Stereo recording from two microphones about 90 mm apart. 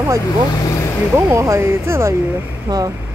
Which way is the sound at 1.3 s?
30° right (ahead or behind).